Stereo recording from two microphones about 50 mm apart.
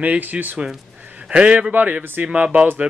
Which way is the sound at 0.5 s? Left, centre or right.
Centre.